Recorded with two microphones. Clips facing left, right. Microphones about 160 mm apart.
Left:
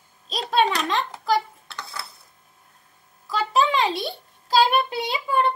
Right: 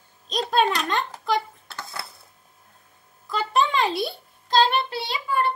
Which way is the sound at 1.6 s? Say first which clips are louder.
Even; 45° right (ahead or behind).